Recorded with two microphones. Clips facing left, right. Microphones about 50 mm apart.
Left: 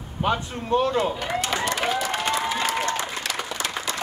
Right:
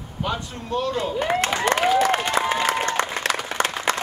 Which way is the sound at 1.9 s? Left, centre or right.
Right.